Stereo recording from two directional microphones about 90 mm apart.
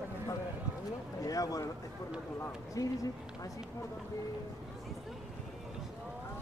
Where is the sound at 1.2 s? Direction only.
40° left (ahead or behind).